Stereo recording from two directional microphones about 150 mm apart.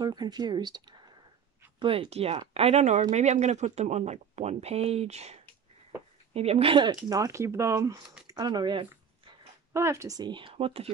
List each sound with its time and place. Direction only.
0.0 s speech: 30° right (ahead or behind)
7.1 s speech: 20° right (ahead or behind)
9.8 s speech: 20° right (ahead or behind); by 10.9 s 40° right (ahead or behind)